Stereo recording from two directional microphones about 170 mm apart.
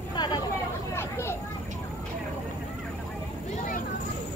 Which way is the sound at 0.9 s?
15° left (ahead or behind).